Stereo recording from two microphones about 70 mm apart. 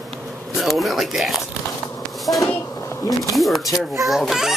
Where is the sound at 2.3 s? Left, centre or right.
Left.